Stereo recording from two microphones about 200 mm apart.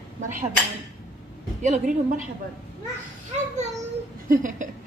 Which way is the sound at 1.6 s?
40° right (ahead or behind).